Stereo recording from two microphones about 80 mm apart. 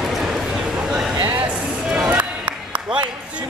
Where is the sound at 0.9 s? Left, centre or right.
Centre.